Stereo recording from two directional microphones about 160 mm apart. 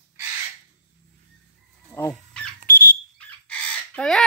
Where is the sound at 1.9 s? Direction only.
20° left (ahead or behind).